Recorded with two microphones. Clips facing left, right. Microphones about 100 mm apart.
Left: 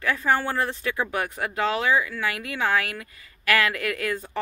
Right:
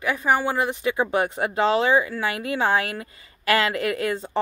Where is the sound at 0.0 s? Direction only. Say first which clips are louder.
Right 2 dB; 15° right (ahead or behind).